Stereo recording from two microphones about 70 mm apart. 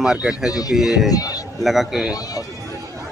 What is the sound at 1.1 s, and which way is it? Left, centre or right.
Speech, left.